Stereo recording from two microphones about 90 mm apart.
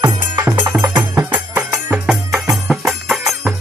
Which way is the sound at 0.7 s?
30° right (ahead or behind).